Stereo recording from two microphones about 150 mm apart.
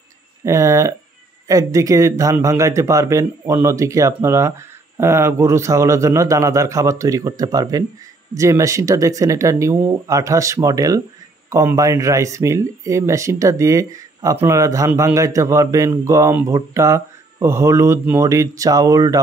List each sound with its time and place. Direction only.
0.5 s speech: 20° right (ahead or behind)